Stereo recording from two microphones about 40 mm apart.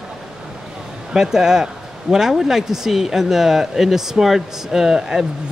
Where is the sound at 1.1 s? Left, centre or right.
Centre.